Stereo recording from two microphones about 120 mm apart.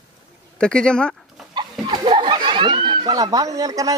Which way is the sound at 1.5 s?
40° right (ahead or behind).